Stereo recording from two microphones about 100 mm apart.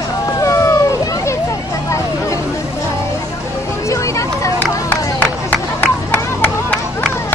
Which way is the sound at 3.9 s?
30° left (ahead or behind).